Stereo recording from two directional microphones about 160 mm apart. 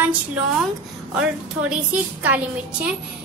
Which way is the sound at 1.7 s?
10° right (ahead or behind).